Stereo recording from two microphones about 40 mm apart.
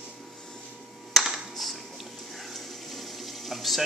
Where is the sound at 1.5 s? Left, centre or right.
Centre.